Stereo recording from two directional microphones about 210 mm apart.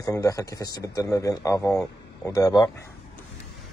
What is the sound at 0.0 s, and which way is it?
Speech, 15° left (ahead or behind).